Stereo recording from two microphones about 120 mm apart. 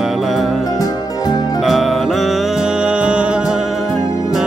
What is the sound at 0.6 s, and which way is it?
Music, 30° left (ahead or behind).